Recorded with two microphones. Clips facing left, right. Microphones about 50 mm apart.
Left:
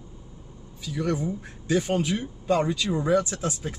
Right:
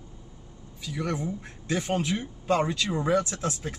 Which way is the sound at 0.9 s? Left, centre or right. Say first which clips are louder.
Left 3 dB; centre.